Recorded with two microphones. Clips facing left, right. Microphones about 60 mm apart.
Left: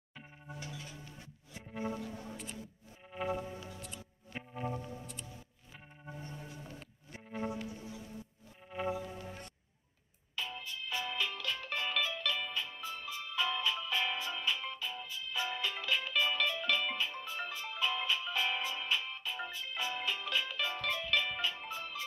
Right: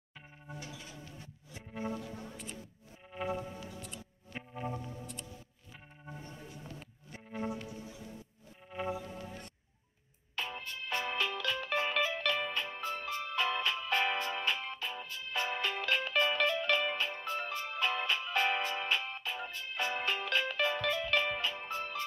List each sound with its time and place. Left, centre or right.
1.7 s music: centre
7.1 s music: centre
8.6 s music: centre
10.3 s music: right
11.9 s music: right
12.2 s music: right
20.7 s music: right
21.0 s music: right